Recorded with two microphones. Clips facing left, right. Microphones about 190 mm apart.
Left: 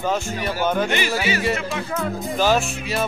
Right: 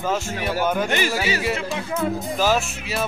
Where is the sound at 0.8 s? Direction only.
45° right (ahead or behind).